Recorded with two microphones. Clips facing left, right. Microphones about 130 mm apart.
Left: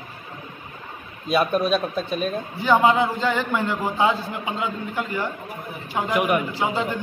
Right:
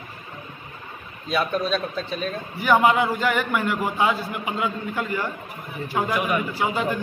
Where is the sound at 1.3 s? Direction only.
15° left (ahead or behind).